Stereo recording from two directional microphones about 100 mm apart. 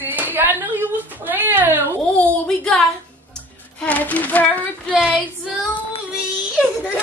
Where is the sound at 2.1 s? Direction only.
10° left (ahead or behind).